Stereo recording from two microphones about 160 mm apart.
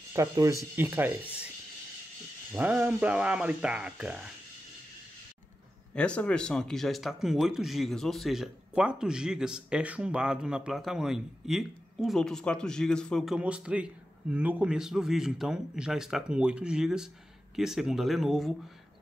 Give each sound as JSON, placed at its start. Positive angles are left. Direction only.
{"t": 0.1, "sound": "speech", "side_deg": -20}
{"t": 2.5, "sound": "speech", "side_deg": -10}
{"t": 5.9, "sound": "speech", "side_deg": 5}